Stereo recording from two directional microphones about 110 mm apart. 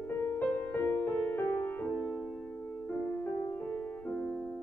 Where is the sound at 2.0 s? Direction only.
5° left (ahead or behind).